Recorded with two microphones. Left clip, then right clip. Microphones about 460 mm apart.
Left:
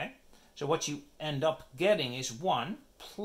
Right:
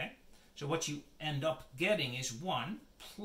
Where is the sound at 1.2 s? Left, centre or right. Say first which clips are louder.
Left 5 dB; centre.